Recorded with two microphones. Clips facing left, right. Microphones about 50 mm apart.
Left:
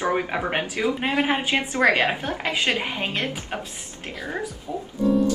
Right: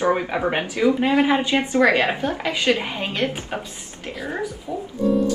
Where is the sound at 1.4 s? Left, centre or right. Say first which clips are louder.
Right 2 dB; left.